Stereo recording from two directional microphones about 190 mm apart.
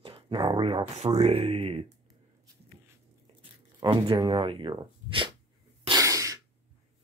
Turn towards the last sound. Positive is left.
turn(degrees=-15)  # may be behind; listen again after turning